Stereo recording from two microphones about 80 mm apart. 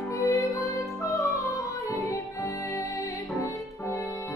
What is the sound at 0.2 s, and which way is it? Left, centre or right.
Music, left.